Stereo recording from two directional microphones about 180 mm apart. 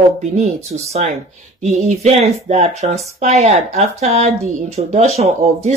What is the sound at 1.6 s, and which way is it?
A woman's voice, 40° right (ahead or behind).